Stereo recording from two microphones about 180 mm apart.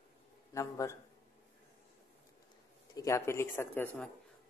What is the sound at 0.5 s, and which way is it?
Speech, 15° left (ahead or behind).